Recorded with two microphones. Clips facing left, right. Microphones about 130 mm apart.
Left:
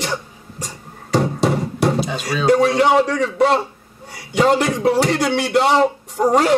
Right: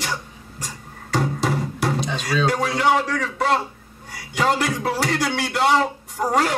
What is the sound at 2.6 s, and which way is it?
A man's voice, 25° left (ahead or behind).